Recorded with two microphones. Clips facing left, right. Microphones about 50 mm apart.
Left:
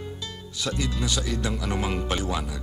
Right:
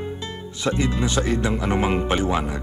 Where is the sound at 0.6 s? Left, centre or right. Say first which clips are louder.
Right 6 dB; right.